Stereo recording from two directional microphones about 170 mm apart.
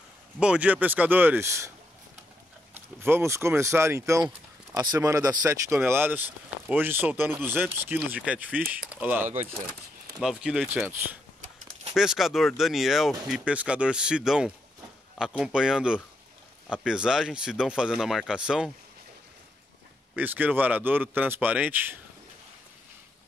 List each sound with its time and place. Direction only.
0.4 s speech: 5° right (ahead or behind)
2.7 s speech: 15° right (ahead or behind)
20.2 s speech: 10° right (ahead or behind)